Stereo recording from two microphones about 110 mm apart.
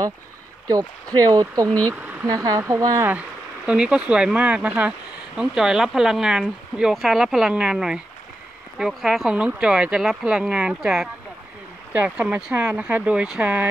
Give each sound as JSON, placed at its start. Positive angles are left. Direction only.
{"t": 1.3, "sound": "speech", "side_deg": -30}
{"t": 3.1, "sound": "speech", "side_deg": -10}